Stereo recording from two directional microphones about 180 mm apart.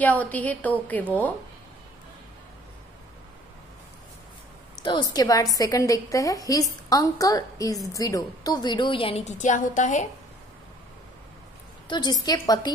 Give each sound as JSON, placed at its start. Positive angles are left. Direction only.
{"t": 0.0, "sound": "a woman's voice", "side_deg": 10}
{"t": 4.8, "sound": "a woman's voice", "side_deg": 25}
{"t": 11.9, "sound": "a woman's voice", "side_deg": 25}